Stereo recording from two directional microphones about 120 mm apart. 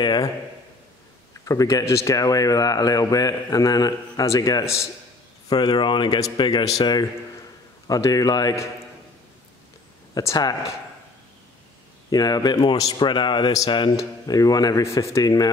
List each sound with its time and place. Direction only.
0.0 s a man's voice: 35° left (ahead or behind)
1.4 s a man's voice: 30° left (ahead or behind)
10.1 s a man's voice: 30° left (ahead or behind)
12.1 s a man's voice: 35° left (ahead or behind)